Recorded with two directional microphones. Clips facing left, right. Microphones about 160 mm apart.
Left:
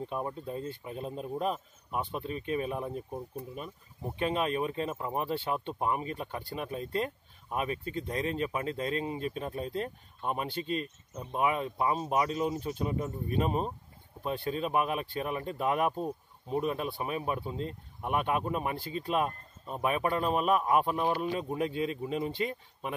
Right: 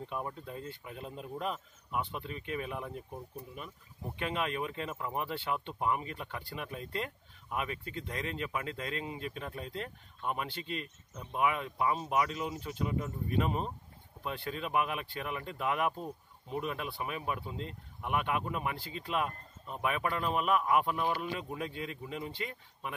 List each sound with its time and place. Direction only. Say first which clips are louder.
0.1 s speech: left 2 dB; 30° left (ahead or behind)
21.5 s speech: left 8 dB; 20° left (ahead or behind)